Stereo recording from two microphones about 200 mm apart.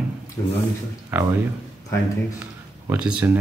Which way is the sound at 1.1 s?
10° right (ahead or behind).